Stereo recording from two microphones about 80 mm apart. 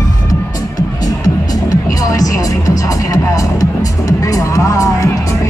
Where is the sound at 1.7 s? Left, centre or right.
Left.